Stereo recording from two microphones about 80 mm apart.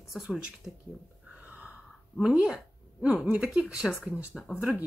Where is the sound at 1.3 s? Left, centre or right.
Right.